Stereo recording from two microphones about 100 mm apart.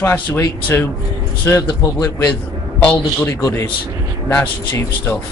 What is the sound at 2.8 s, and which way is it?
Speech, 10° left (ahead or behind).